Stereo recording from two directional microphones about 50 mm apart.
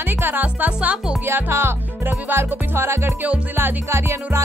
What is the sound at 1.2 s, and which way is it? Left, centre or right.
Music, right.